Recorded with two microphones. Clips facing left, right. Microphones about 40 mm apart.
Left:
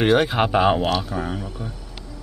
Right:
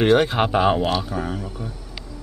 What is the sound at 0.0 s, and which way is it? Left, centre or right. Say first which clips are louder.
Speech: right 1 dB; centre.